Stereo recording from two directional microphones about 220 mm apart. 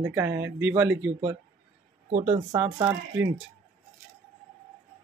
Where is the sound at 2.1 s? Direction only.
30° right (ahead or behind).